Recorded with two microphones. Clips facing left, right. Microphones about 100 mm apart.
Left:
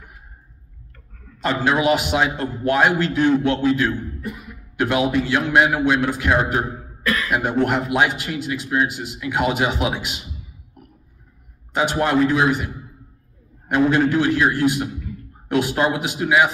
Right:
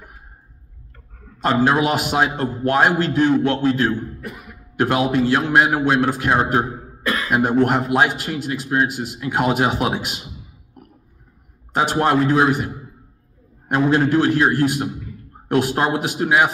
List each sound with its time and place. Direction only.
1.4 s a man's voice: 40° right (ahead or behind)
7.3 s a man's voice: 40° right (ahead or behind)
11.7 s a man's voice: 40° right (ahead or behind)